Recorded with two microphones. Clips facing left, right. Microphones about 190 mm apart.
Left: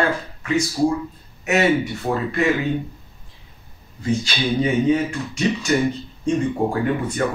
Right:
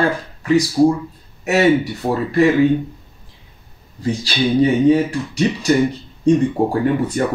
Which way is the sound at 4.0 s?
35° right (ahead or behind).